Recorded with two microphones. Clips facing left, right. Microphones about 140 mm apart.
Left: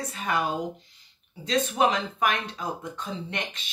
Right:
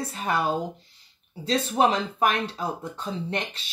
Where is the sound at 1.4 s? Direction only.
35° right (ahead or behind).